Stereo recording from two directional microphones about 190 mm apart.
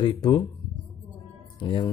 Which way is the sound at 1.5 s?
25° left (ahead or behind).